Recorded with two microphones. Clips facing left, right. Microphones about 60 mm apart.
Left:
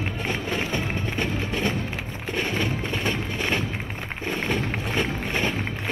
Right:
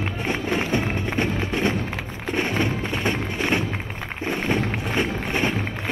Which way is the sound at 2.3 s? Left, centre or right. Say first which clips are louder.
Right 3 dB; right.